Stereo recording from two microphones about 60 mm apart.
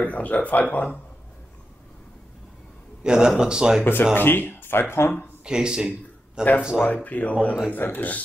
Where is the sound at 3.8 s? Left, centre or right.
Left.